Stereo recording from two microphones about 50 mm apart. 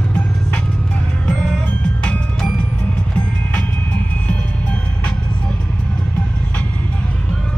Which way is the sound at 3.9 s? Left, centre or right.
Left.